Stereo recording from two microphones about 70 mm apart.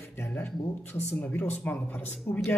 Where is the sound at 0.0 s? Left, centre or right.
Left.